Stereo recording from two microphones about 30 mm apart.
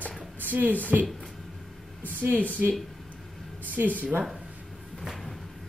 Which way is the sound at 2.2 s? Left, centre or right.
Right.